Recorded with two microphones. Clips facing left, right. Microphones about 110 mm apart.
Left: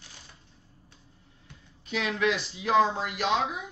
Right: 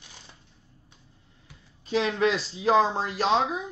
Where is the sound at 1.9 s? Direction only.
30° right (ahead or behind).